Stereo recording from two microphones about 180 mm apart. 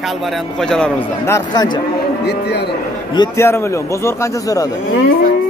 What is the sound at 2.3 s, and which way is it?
Speech, 65° left (ahead or behind).